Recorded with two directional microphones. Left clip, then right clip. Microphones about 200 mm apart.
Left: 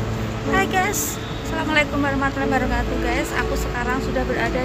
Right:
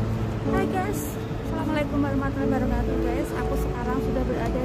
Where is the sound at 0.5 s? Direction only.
5° left (ahead or behind).